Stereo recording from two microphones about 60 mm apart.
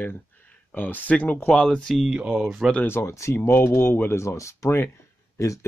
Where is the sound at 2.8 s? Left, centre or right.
Left.